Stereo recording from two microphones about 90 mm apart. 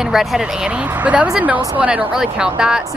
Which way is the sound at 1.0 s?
15° right (ahead or behind).